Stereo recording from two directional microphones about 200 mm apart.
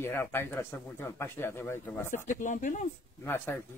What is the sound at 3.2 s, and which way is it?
Speech, 10° left (ahead or behind).